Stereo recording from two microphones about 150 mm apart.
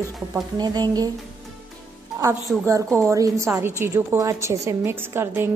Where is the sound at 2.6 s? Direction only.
20° right (ahead or behind).